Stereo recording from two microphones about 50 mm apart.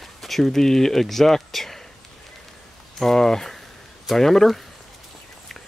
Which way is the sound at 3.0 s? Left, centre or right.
Centre.